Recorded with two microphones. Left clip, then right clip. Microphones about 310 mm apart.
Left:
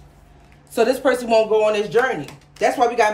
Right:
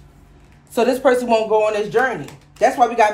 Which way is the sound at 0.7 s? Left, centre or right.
Centre.